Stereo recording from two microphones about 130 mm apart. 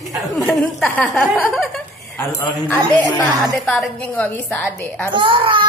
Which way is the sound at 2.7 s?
10° left (ahead or behind).